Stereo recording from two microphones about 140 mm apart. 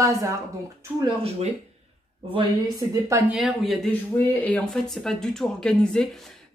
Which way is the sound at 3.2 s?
5° right (ahead or behind).